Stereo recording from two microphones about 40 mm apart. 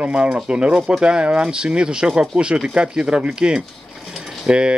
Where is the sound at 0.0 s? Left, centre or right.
Right.